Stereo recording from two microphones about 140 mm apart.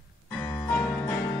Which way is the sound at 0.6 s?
15° left (ahead or behind).